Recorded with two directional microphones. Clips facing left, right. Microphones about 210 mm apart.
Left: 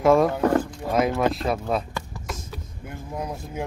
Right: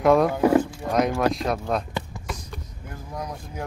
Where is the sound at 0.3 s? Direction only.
10° right (ahead or behind).